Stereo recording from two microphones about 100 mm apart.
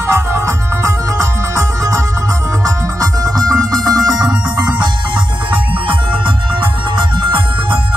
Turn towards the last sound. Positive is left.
turn(degrees=-55)  # may be behind; listen again after turning